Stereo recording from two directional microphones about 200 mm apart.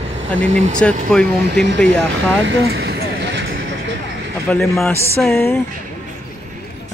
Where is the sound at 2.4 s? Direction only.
55° right (ahead or behind).